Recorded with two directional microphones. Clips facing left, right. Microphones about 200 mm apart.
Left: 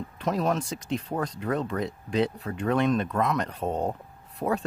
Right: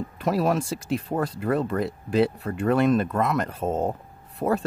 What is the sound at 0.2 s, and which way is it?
Speech, 5° right (ahead or behind).